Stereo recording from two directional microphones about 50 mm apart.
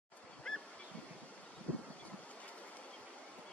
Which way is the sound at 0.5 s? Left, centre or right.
Centre.